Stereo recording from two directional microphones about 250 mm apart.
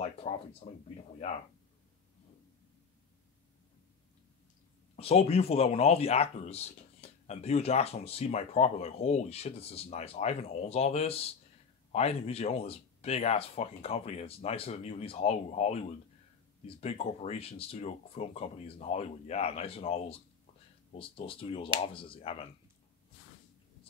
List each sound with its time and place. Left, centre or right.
0.2 s speech: left
4.9 s speech: left